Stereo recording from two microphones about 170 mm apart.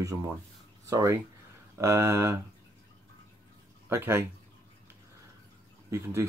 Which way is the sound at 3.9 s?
15° right (ahead or behind).